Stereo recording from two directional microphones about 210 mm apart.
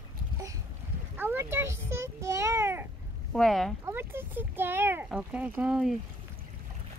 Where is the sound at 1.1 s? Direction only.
10° right (ahead or behind).